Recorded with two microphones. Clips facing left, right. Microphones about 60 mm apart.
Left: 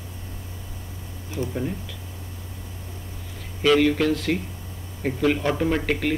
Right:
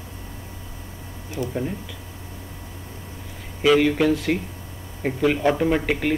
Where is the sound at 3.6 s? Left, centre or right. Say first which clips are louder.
Right 1 dB; centre.